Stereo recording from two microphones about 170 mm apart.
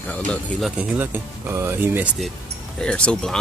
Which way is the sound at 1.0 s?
15° right (ahead or behind).